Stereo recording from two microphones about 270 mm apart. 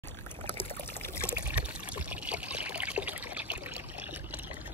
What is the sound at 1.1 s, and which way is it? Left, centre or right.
Trickle, centre.